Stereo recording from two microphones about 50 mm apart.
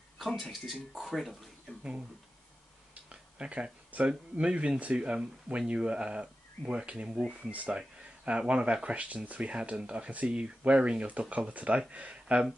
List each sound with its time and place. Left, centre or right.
0.3 s speech: centre
2.9 s speech: right